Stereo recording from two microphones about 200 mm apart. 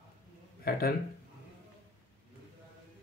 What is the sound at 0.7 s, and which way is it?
Speech, 50° left (ahead or behind).